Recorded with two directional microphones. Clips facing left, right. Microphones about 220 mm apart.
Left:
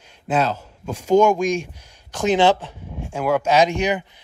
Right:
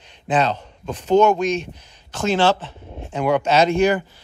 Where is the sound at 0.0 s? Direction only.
10° left (ahead or behind).